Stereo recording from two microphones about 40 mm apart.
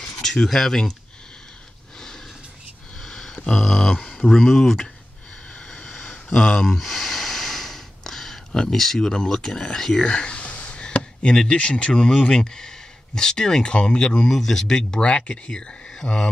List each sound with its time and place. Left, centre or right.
0.2 s speech: centre
3.0 s a sound: centre
3.5 s speech: centre
5.7 s a sound: centre
6.7 s snort: centre
8.7 s speech: centre
10.0 s speech: left
10.5 s chop: left
11.5 s speech: left
14.3 s speech: centre; by 16.2 s left